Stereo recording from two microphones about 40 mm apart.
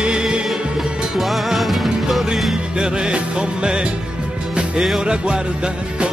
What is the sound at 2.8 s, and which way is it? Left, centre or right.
Music, right.